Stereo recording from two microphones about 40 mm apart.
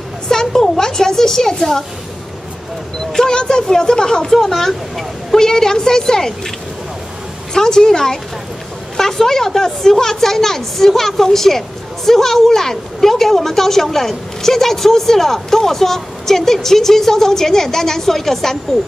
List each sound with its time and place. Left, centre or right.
0.3 s a woman's voice: centre
3.1 s a woman's voice: centre
7.5 s a woman's voice: centre